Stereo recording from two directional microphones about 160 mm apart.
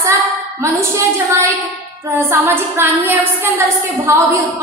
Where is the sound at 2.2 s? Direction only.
15° right (ahead or behind).